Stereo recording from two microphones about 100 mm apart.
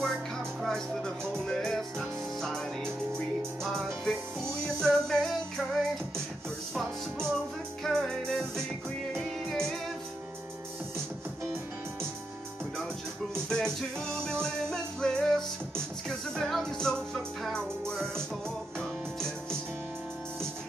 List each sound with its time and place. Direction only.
0.0 s music: 5° left (ahead or behind)
13.5 s music: 5° left (ahead or behind)